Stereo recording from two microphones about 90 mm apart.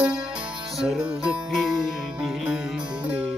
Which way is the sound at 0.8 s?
5° right (ahead or behind).